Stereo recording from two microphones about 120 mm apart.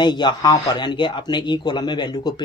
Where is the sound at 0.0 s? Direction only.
40° left (ahead or behind).